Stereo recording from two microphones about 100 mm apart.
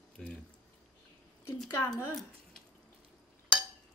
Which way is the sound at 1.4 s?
25° left (ahead or behind).